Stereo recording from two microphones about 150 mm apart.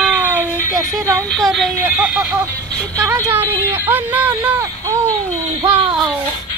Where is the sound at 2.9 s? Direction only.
25° right (ahead or behind).